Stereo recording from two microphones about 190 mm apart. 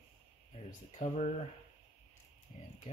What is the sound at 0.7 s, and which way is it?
Speech, 40° left (ahead or behind).